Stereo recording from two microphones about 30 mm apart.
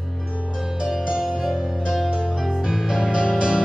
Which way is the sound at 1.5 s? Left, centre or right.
Centre.